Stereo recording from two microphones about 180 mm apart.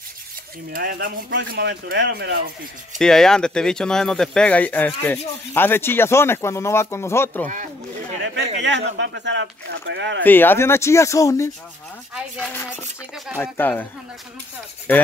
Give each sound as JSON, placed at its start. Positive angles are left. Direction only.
{"t": 0.7, "sound": "speech", "side_deg": -55}
{"t": 3.0, "sound": "speech", "side_deg": 5}
{"t": 8.5, "sound": "speech", "side_deg": -75}
{"t": 10.2, "sound": "speech", "side_deg": 10}
{"t": 14.9, "sound": "speech", "side_deg": 10}